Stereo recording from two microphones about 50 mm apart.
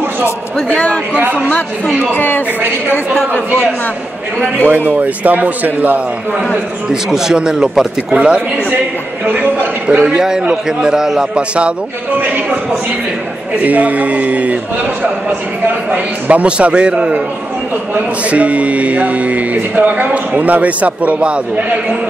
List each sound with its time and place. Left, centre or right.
2.1 s speech: left
4.6 s speech: right
6.9 s speech: centre
8.2 s speech: right
9.2 s speech: right
10.0 s speech: centre
12.2 s speech: right
13.6 s speech: right
15.9 s speech: right